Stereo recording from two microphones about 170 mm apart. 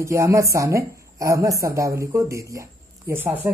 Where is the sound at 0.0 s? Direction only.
15° right (ahead or behind).